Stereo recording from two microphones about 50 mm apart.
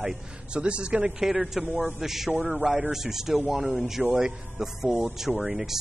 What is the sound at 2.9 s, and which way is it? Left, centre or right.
Speech, centre.